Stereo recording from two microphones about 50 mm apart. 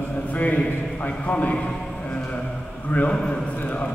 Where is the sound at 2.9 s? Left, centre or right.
Left.